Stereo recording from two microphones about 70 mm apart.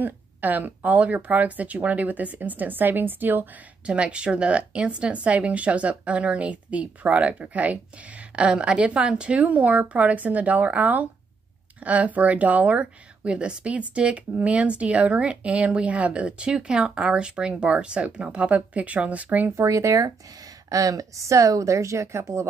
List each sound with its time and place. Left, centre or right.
0.0 s speech: right
3.8 s speech: centre
19.5 s a woman's voice: right